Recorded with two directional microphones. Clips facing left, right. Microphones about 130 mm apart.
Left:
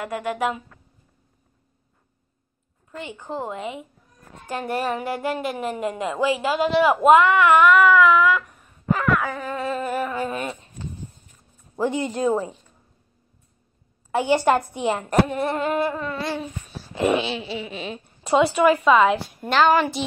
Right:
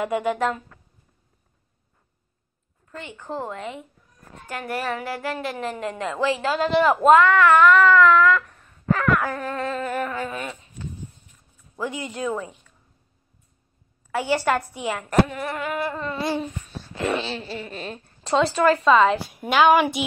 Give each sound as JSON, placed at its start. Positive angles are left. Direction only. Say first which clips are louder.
{"t": 0.0, "sound": "a woman's voice", "louder": "right 2 dB", "side_deg": 0}
{"t": 2.9, "sound": "a woman's voice", "louder": "left 1 dB", "side_deg": 15}
{"t": 4.5, "sound": "a woman's voice", "louder": "left 3 dB", "side_deg": 25}
{"t": 9.1, "sound": "a woman's voice", "louder": "even", "side_deg": 0}
{"t": 9.7, "sound": "a sound", "louder": "left 4 dB", "side_deg": 10}
{"t": 10.2, "sound": "speech", "louder": "left 3 dB", "side_deg": 25}
{"t": 11.7, "sound": "speech", "louder": "left 6 dB", "side_deg": 30}
{"t": 14.1, "sound": "speech", "louder": "left 3 dB", "side_deg": 20}
{"t": 15.9, "sound": "a woman's voice", "louder": "right 1 dB", "side_deg": 5}
{"t": 16.9, "sound": "a woman's voice", "louder": "left 4 dB", "side_deg": 15}